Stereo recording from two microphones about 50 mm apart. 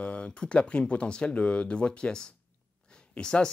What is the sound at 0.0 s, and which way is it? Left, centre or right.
Speech, left.